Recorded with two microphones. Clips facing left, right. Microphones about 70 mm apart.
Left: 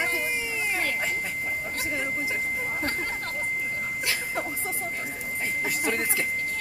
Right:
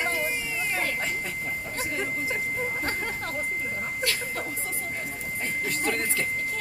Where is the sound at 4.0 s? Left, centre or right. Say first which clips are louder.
Even; centre.